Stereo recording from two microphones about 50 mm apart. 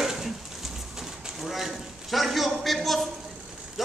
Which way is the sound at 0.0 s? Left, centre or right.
Centre.